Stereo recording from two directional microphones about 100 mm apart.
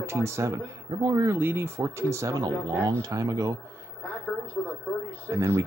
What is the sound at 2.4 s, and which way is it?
Speech, 40° right (ahead or behind).